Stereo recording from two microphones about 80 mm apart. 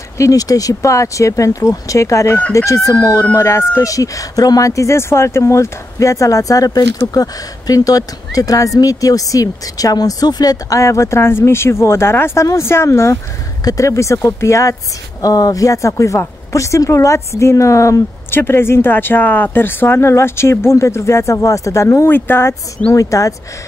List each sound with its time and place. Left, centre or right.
0.2 s speech: left
15.2 s speech: left
18.3 s speech: left
22.9 s speech: left